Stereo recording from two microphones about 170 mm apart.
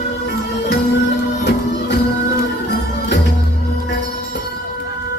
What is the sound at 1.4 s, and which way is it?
Music, 85° left.